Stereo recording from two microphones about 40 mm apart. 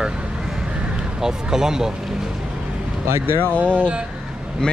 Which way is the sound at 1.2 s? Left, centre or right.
Centre.